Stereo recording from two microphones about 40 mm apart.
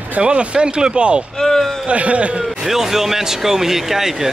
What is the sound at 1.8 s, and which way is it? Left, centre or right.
Speech, right.